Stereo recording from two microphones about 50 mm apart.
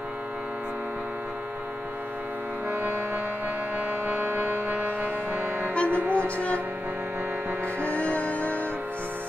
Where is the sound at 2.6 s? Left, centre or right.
Right.